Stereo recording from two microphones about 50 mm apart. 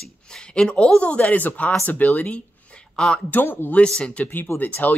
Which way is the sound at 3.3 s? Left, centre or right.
Left.